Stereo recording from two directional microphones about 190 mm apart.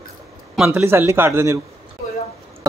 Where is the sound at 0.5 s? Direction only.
5° right (ahead or behind).